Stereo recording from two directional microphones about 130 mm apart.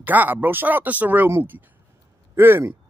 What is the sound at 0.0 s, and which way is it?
Speech, 15° right (ahead or behind).